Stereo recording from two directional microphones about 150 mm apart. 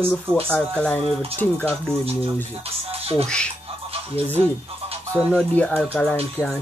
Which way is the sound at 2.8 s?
40° right (ahead or behind).